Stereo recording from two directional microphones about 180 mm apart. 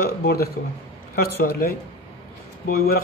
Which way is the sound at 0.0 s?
55° left (ahead or behind).